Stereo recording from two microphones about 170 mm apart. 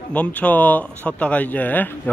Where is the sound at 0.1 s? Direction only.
10° left (ahead or behind).